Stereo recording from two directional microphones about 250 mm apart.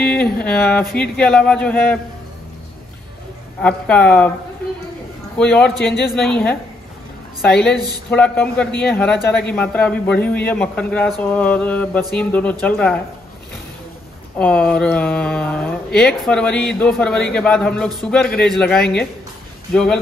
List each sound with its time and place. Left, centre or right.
0.0 s a man's voice: centre
3.6 s a man's voice: centre
5.4 s a man's voice: centre
7.7 s speech: centre
8.1 s a man's voice: centre
14.4 s a man's voice: centre